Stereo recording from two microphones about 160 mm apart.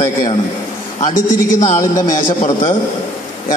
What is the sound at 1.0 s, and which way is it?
A man's voice, 55° left (ahead or behind).